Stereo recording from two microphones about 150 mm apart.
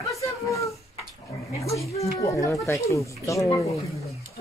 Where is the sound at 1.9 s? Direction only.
20° left (ahead or behind).